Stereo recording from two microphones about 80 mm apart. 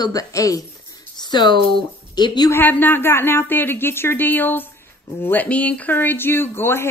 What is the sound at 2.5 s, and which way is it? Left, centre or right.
A woman's voice, left.